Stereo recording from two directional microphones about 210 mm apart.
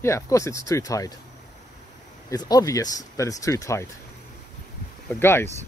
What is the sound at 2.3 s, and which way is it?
Speech, 20° left (ahead or behind).